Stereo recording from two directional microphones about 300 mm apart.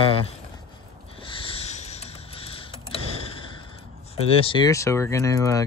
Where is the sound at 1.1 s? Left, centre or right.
Centre.